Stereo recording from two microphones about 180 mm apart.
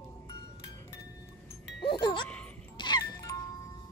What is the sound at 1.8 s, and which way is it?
Music, 25° left (ahead or behind).